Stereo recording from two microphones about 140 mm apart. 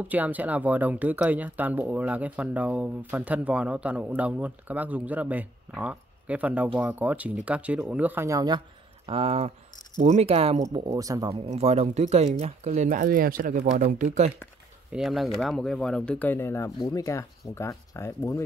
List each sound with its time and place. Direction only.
0.1 s speech: 10° right (ahead or behind)
9.0 s speech: 40° right (ahead or behind)
10.6 s speech: 25° right (ahead or behind)
11.2 s speech: 40° right (ahead or behind); by 14.3 s 60° right (ahead or behind)
14.9 s speech: centre (ahead or behind); by 18.4 s 20° left (ahead or behind)